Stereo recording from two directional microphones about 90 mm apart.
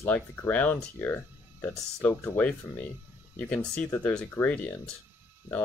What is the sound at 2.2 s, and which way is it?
Speech, 20° left (ahead or behind).